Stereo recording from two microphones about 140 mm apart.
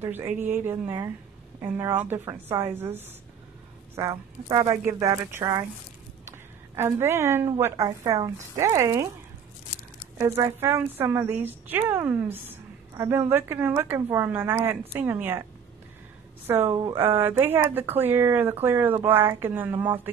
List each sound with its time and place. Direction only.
0.0 s speech: 15° right (ahead or behind)
6.7 s speech: 20° right (ahead or behind)
10.1 s speech: 20° right (ahead or behind)
16.4 s speech: 15° right (ahead or behind)